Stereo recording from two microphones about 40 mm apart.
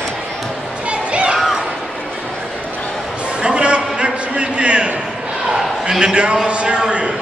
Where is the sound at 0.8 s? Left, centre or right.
Right.